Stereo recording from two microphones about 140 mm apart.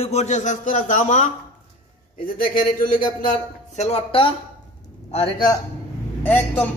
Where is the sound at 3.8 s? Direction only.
40° left (ahead or behind).